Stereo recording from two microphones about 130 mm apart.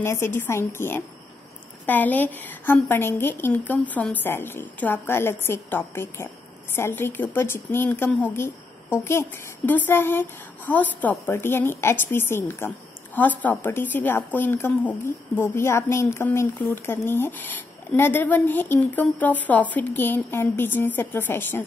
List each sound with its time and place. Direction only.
0.0 s a woman's voice: 20° left (ahead or behind)